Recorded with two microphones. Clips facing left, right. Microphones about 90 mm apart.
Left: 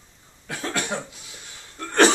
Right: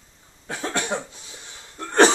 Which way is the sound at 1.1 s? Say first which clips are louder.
Right 1 dB; 25° right (ahead or behind).